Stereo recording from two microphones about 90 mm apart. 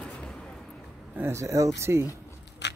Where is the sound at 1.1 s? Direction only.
30° right (ahead or behind).